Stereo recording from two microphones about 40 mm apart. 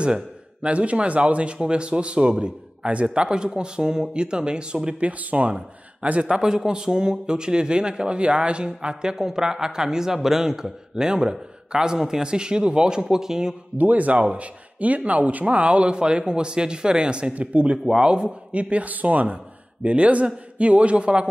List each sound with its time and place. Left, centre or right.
0.0 s speech: right
13.7 s a man's voice: right
17.3 s a man's voice: right
17.8 s a man's voice: right
19.8 s a man's voice: right